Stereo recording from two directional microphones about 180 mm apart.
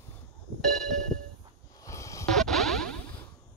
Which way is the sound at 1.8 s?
15° left (ahead or behind).